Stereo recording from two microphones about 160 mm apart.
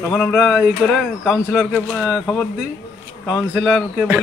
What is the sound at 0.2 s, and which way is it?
Speech, centre (ahead or behind).